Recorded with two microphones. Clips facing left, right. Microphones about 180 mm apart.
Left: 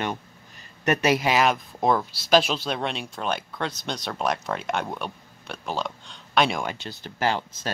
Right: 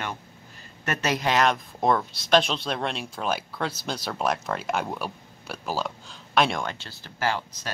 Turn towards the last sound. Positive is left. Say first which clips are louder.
# left 2 dB
turn(degrees=20)  # may be behind; listen again after turning